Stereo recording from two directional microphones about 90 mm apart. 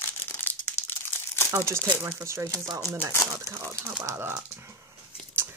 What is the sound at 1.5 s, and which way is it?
Speech, 30° right (ahead or behind).